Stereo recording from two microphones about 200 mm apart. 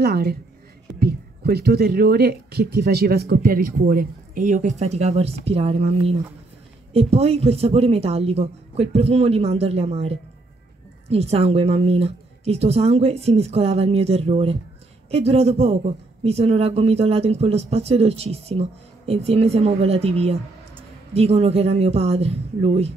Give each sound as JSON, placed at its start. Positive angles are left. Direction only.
{"t": 0.0, "sound": "speech", "side_deg": -50}